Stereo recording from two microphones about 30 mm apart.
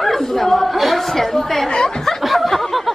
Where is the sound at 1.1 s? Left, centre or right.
Centre.